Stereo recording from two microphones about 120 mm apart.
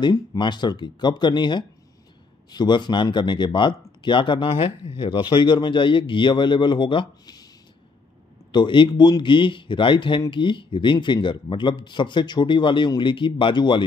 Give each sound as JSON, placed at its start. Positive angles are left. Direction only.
{"t": 0.0, "sound": "speech", "side_deg": 40}
{"t": 8.5, "sound": "speech", "side_deg": 40}